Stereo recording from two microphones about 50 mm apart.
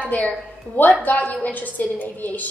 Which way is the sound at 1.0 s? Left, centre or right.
Left.